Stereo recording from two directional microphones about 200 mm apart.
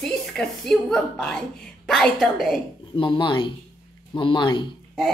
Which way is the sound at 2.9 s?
25° left (ahead or behind).